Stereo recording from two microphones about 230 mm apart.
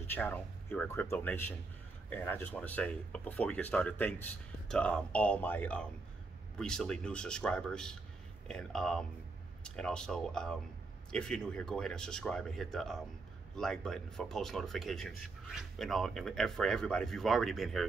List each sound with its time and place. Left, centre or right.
0.0 s speech: centre